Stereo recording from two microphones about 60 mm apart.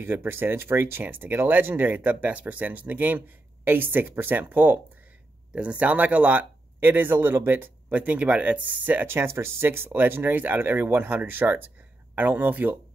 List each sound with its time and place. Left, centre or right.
0.0 s speech: right
5.5 s speech: centre